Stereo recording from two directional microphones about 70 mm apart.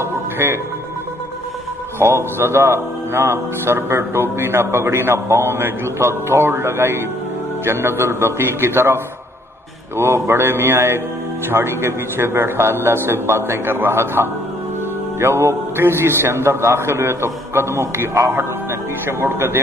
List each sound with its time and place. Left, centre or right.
0.0 s music: right
2.0 s a man's voice: right